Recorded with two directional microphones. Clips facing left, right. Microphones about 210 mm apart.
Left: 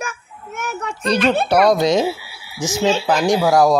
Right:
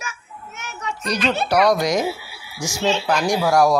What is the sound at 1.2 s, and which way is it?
Speech, 55° left (ahead or behind).